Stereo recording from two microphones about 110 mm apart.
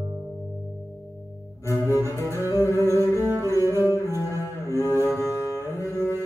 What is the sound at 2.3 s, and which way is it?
Music, 25° right (ahead or behind).